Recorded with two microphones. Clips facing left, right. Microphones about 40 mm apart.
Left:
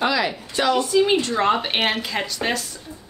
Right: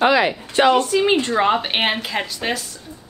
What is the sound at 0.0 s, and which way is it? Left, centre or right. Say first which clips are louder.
Speech: right 5 dB; right.